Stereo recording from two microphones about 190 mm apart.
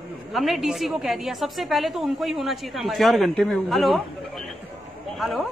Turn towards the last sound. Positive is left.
turn(degrees=0)  # may be behind; listen again after turning